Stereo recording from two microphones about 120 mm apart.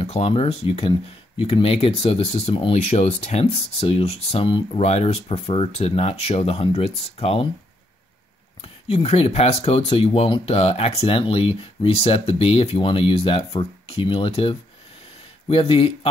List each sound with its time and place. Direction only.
0.0 s speech: 60° left (ahead or behind)
2.7 s speech: 65° left (ahead or behind); by 4.6 s 45° left (ahead or behind)
4.7 s speech: 60° left (ahead or behind)
8.8 s speech: 55° left (ahead or behind)